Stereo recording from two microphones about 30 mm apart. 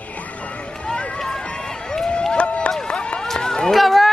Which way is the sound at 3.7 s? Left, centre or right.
Centre.